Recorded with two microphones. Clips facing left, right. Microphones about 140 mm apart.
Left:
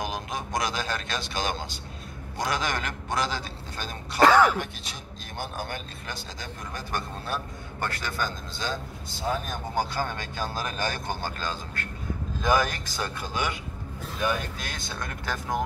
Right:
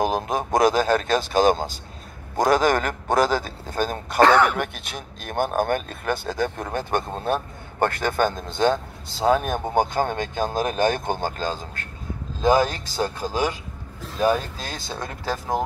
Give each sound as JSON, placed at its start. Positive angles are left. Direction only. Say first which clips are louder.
{"t": 0.0, "sound": "speech", "louder": "right 9 dB", "side_deg": -45}
{"t": 12.4, "sound": "speech", "louder": "right 6 dB", "side_deg": -30}